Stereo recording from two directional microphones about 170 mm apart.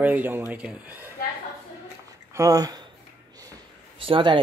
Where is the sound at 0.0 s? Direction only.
10° right (ahead or behind).